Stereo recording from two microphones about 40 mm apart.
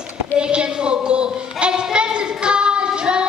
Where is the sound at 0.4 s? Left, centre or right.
Right.